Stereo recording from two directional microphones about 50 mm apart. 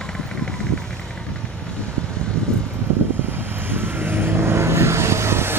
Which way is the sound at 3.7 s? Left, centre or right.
Right.